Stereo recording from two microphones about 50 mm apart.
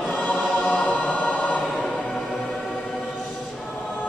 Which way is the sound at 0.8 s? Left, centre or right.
Left.